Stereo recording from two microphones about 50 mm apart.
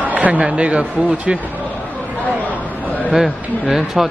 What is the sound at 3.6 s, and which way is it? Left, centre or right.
Speech, centre.